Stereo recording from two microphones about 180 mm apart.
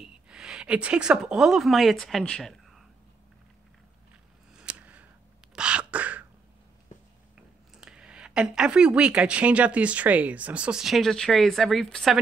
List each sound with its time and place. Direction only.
0.0 s speech: 5° right (ahead or behind)
4.6 s a sound: 5° right (ahead or behind)
7.7 s a woman's voice: 5° right (ahead or behind)